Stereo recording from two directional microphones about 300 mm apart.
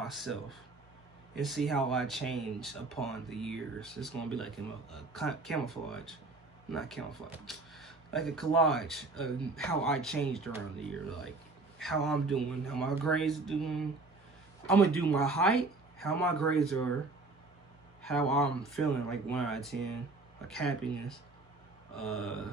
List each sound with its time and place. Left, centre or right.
0.0 s speech: centre
18.0 s speech: centre
21.9 s speech: centre